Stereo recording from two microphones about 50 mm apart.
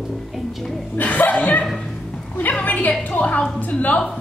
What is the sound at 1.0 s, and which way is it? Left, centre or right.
Chuckle, left.